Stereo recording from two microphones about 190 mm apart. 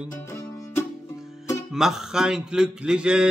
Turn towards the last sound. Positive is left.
turn(degrees=-5)  # may be behind; listen again after turning